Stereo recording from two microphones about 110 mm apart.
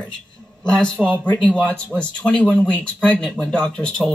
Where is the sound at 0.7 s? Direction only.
10° left (ahead or behind).